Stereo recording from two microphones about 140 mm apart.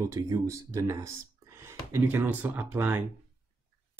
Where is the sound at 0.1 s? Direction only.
20° right (ahead or behind).